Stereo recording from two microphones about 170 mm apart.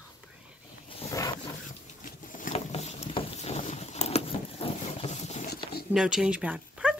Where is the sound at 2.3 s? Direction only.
50° left (ahead or behind).